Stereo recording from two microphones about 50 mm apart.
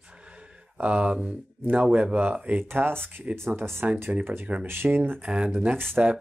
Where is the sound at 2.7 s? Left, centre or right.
Right.